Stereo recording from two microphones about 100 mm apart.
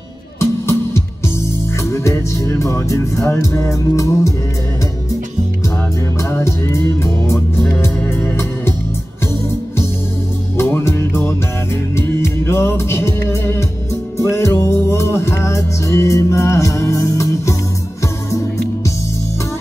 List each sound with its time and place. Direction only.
0.4 s music: 30° left (ahead or behind)
6.3 s music: 25° left (ahead or behind)
10.6 s music: 25° left (ahead or behind)